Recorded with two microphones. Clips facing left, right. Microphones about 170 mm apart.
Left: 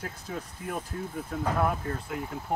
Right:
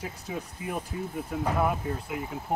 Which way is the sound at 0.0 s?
5° right (ahead or behind).